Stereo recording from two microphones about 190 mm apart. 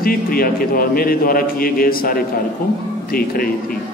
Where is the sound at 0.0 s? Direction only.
50° left (ahead or behind).